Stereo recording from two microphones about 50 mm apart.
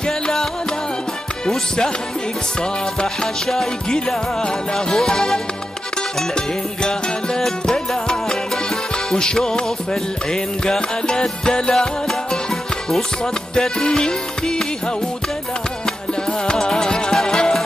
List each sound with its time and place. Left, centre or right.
0.0 s music: centre
3.4 s music: centre
16.3 s music: centre